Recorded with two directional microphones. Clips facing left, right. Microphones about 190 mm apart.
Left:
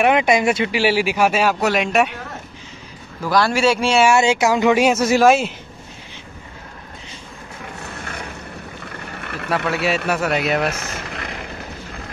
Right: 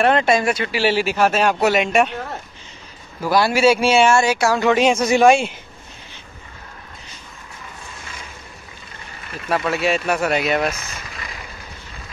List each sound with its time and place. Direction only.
0.0 s speech: 15° left (ahead or behind)
3.3 s speech: 5° right (ahead or behind)
4.1 s speech: 20° left (ahead or behind); by 5.5 s centre (ahead or behind)
7.8 s vehicle: 65° left (ahead or behind)
9.6 s speech: 65° left (ahead or behind)
10.0 s speech: centre (ahead or behind)
10.9 s vehicle: 60° left (ahead or behind)